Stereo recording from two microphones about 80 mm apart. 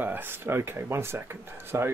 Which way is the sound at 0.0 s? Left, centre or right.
Right.